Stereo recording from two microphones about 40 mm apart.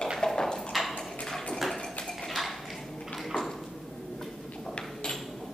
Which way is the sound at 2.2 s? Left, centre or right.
Centre.